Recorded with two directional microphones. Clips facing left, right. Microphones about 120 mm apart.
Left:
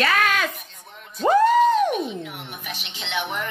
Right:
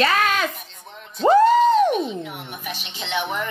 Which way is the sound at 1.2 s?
35° right (ahead or behind).